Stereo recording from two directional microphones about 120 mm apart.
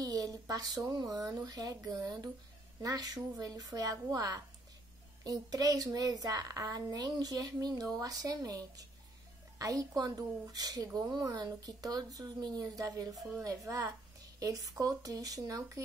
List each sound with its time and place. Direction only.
0.0 s speech: 30° right (ahead or behind)